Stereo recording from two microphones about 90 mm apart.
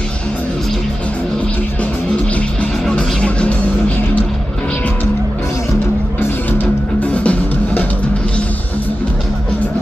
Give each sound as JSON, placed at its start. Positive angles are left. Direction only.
{"t": 2.9, "sound": "music", "side_deg": 10}
{"t": 6.6, "sound": "music", "side_deg": 15}